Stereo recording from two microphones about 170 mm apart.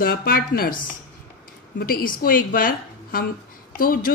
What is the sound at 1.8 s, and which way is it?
A woman's voice, 60° left (ahead or behind).